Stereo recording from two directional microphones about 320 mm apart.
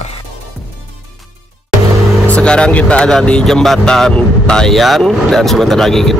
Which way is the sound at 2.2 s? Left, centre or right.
Centre.